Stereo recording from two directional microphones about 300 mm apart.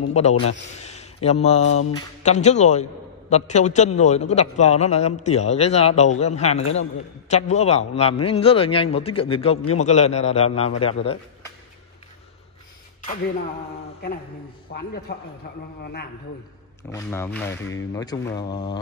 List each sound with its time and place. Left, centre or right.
0.1 s a man's voice: left
1.7 s a sound: left
2.0 s a man's voice: left
14.7 s a man's voice: left
16.9 s speech: centre